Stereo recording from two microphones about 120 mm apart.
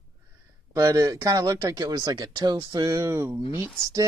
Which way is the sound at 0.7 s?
25° right (ahead or behind).